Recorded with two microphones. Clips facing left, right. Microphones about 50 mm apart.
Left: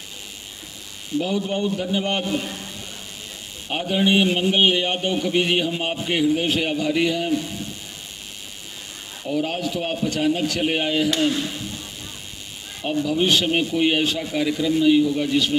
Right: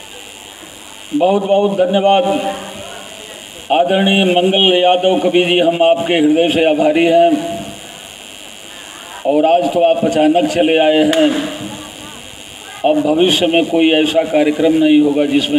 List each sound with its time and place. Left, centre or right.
1.1 s a man's voice: right
9.1 s a man's voice: right